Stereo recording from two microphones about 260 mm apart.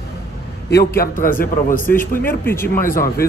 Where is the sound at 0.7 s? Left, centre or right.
Left.